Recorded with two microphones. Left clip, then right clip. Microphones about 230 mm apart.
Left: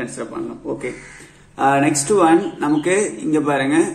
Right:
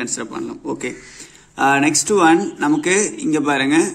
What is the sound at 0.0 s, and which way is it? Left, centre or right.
A man's voice, right.